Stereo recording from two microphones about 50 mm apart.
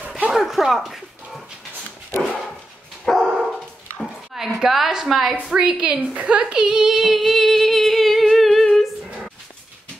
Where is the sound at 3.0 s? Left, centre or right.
Centre.